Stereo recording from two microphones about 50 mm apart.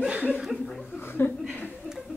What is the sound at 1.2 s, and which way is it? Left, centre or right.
Speech, left.